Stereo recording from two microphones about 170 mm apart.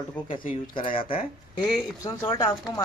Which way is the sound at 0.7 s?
30° left (ahead or behind).